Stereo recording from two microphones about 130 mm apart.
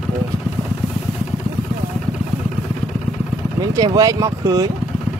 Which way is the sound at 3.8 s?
30° right (ahead or behind).